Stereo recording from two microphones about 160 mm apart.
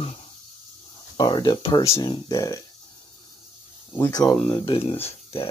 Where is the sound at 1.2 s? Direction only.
25° left (ahead or behind).